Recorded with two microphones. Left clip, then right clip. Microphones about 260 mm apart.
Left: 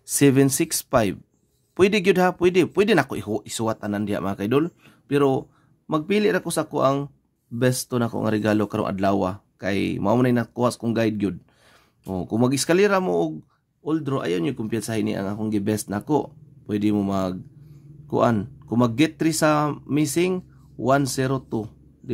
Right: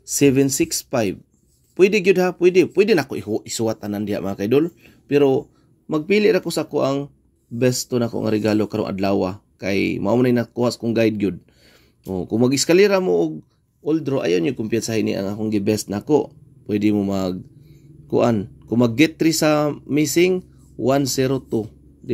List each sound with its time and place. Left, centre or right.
0.0 s speech: centre